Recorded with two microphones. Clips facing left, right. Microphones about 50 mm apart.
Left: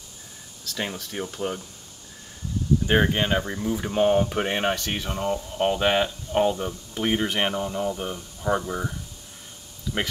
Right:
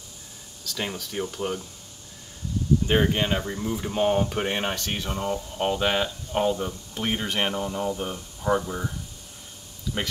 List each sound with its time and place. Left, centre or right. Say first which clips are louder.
0.7 s speech: even; centre
2.9 s speech: left 3 dB; centre
9.9 s speech: left 2 dB; left